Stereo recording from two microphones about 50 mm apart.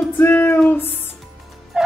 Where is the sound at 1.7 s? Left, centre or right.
Centre.